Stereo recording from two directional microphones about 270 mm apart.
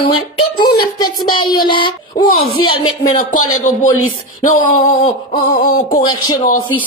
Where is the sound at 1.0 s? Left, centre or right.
Centre.